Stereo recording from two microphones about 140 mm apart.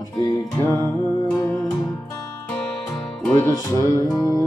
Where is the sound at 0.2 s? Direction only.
20° left (ahead or behind).